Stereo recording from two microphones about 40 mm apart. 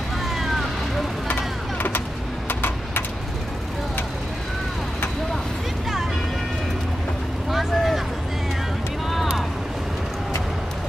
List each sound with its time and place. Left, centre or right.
0.4 s vehicle: centre
1.3 s vehicle: left
7.5 s vehicle: centre